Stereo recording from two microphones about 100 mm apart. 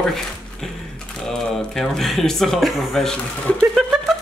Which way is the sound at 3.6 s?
5° right (ahead or behind).